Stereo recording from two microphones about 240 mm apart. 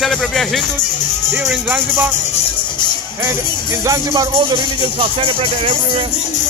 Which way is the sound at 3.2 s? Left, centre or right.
Centre.